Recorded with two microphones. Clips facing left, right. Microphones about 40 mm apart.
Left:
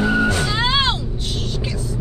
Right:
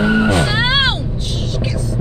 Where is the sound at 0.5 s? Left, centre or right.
Centre.